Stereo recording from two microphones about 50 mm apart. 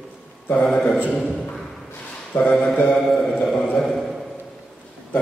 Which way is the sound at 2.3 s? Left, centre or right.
Left.